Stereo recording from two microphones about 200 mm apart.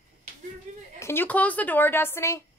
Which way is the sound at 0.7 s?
35° right (ahead or behind).